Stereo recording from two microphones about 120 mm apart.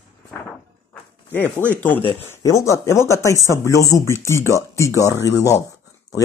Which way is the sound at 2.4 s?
25° left (ahead or behind).